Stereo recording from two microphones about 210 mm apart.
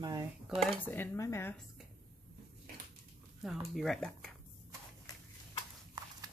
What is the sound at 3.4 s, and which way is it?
Speech, centre (ahead or behind).